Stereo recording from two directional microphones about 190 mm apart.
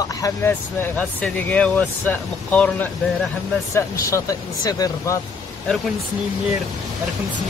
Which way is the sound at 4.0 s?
15° left (ahead or behind).